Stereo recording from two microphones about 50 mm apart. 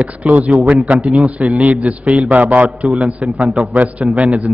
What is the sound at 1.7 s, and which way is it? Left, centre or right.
A man's voice, right.